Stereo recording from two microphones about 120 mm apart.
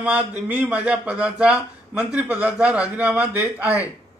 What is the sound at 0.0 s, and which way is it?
A man's voice, 10° right (ahead or behind).